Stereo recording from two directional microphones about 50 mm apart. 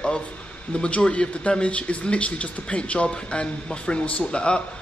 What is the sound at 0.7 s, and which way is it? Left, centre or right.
Speech, left.